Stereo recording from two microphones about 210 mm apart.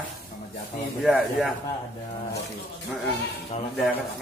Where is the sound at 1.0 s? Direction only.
5° right (ahead or behind).